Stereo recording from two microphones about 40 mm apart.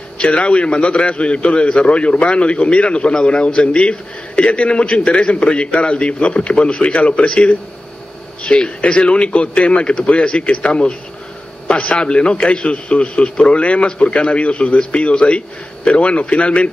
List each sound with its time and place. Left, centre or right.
0.2 s a man's voice: left